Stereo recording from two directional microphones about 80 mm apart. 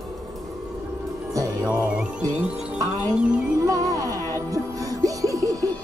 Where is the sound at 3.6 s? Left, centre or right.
Right.